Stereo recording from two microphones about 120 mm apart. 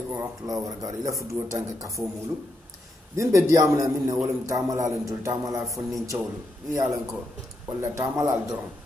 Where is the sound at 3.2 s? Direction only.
25° right (ahead or behind).